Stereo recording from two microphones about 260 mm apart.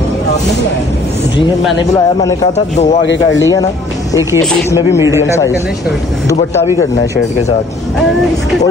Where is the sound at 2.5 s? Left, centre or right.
Left.